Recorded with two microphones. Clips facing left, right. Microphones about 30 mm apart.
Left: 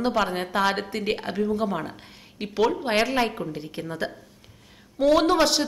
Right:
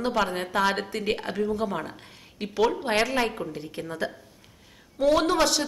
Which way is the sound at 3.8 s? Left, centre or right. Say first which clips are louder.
Left 1 dB; left.